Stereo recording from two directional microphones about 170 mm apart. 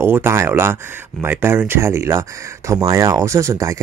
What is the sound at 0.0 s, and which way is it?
Speech, 15° right (ahead or behind).